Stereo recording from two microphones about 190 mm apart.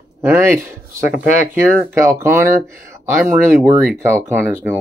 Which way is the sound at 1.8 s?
15° right (ahead or behind).